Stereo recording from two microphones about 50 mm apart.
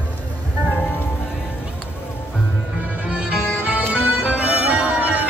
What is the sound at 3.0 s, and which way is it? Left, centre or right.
Music, right.